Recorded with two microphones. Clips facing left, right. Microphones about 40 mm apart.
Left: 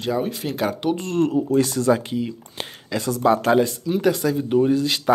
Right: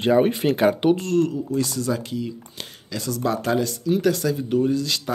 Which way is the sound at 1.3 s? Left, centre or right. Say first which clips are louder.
Left 5 dB; left.